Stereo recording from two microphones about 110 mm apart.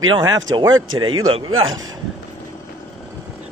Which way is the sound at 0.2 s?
30° right (ahead or behind).